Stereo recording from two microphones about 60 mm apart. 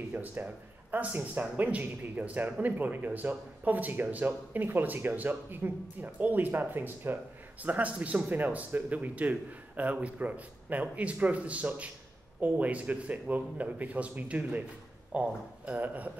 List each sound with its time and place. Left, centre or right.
0.1 s speech: right